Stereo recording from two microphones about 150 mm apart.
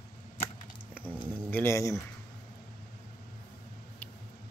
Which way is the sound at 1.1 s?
15° left (ahead or behind).